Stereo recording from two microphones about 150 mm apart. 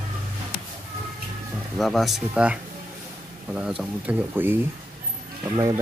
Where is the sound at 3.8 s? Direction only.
10° right (ahead or behind).